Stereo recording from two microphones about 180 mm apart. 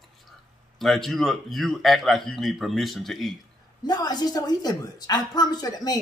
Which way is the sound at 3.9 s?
20° left (ahead or behind).